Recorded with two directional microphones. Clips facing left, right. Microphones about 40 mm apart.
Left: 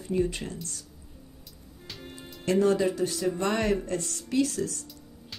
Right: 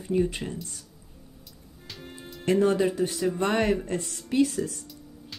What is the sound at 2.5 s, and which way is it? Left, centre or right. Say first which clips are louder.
Speech: right 1 dB; centre.